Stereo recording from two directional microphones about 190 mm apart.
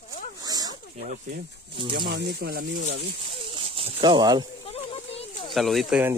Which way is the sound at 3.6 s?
30° right (ahead or behind).